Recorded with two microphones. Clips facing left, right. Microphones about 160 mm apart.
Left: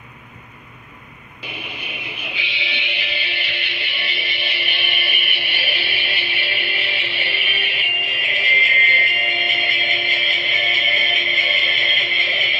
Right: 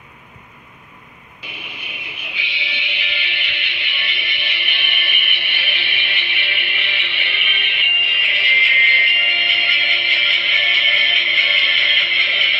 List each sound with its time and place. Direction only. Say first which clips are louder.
2.3 s music: right 1 dB; 35° left (ahead or behind)